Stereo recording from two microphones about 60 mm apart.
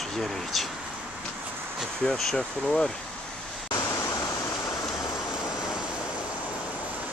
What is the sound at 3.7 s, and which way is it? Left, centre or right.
Waterfall, left.